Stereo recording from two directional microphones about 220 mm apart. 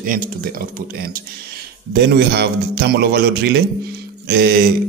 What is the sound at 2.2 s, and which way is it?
Speech, 45° right (ahead or behind).